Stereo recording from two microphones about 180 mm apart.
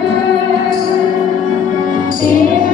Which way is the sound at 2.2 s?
50° left (ahead or behind).